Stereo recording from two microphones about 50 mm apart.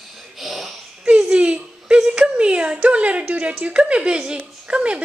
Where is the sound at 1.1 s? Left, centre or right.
Right.